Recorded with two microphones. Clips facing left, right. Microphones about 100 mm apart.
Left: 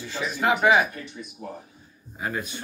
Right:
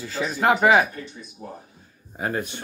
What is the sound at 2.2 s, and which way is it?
Speech, 55° right (ahead or behind).